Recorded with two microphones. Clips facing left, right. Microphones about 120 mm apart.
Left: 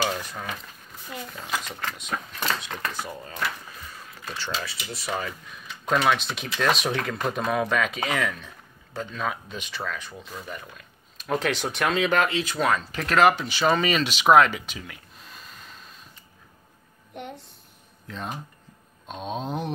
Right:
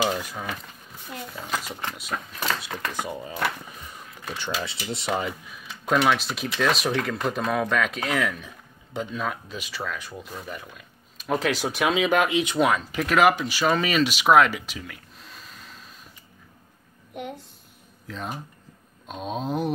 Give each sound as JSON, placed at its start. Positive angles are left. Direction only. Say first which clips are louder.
{"t": 0.0, "sound": "speech", "louder": "right 2 dB", "side_deg": -10}
{"t": 2.9, "sound": "speech", "louder": "right 3 dB", "side_deg": -15}
{"t": 5.5, "sound": "speech", "louder": "even", "side_deg": -5}
{"t": 14.2, "sound": "a sound", "louder": "left 2 dB", "side_deg": 0}
{"t": 17.1, "sound": "a child's voice", "louder": "right 3 dB", "side_deg": -5}